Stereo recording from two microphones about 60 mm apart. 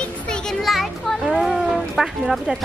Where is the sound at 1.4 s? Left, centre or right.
Centre.